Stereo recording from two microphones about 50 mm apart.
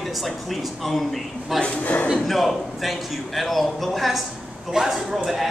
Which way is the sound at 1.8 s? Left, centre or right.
Left.